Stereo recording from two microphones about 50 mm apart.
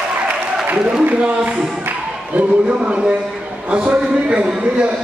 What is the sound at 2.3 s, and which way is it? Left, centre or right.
A man's voice, right.